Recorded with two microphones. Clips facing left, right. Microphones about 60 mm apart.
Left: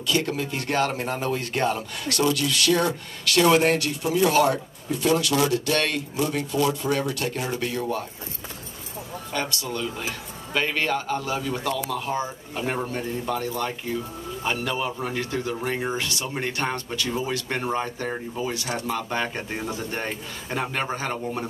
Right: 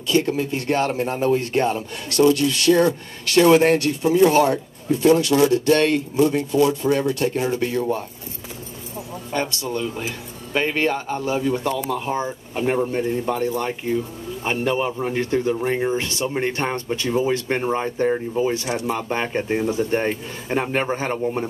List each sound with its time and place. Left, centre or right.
0.1 s speech: right
9.3 s speech: right
19.2 s speech: centre
19.8 s speech: right